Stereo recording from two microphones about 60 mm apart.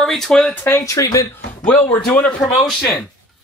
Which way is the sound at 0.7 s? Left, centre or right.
Left.